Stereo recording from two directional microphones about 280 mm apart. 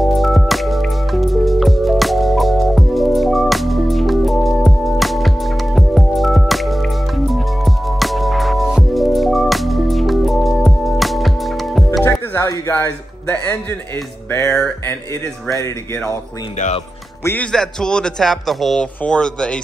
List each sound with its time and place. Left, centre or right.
0.0 s music: centre
12.1 s music: centre
16.5 s speech: left
17.2 s speech: centre